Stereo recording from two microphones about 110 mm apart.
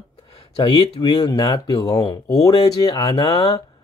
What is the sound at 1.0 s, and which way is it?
Speech, 40° left (ahead or behind).